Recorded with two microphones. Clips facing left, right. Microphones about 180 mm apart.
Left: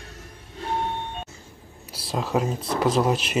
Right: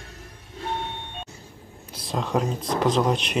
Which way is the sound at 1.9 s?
5° left (ahead or behind).